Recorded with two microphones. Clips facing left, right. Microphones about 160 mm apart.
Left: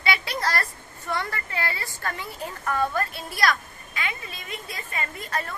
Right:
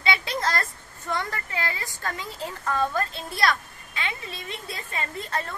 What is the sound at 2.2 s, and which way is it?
Speech, 15° left (ahead or behind).